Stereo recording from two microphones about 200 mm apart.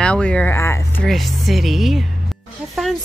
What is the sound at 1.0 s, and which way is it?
Speech, centre (ahead or behind).